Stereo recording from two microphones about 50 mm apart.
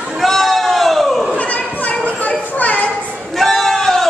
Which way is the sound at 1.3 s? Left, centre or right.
Left.